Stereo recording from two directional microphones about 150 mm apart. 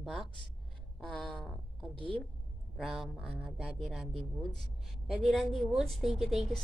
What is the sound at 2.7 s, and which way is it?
Speech, centre (ahead or behind).